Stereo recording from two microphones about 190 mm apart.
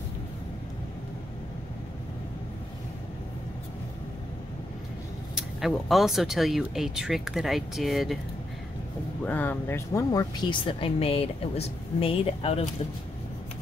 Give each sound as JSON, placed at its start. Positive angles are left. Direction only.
{"t": 5.3, "sound": "speech", "side_deg": 0}
{"t": 9.2, "sound": "speech", "side_deg": 10}